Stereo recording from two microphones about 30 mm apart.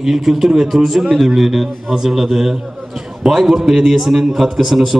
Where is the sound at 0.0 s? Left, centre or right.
Centre.